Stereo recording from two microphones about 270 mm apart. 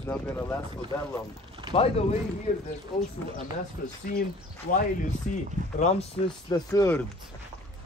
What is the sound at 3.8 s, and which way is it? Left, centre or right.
Speech, left.